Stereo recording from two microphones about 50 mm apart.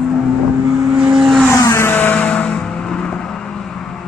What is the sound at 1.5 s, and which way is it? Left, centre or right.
Vehicle, left.